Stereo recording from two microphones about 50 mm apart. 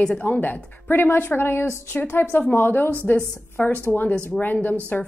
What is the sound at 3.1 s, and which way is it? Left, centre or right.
A woman's voice, left.